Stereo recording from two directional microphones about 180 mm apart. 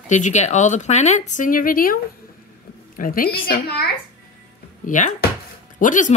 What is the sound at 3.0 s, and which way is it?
Speech, 50° left (ahead or behind).